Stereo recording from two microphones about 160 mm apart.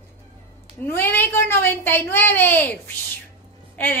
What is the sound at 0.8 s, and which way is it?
A woman's voice, 10° left (ahead or behind).